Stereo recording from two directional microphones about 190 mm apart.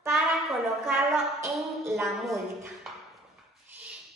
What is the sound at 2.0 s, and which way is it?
Speech, centre (ahead or behind).